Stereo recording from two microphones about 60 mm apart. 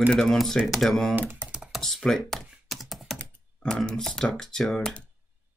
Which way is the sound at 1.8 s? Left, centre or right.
Centre.